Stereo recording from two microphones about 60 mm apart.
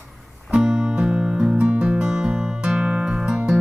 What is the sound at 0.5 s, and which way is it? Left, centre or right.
Music, centre.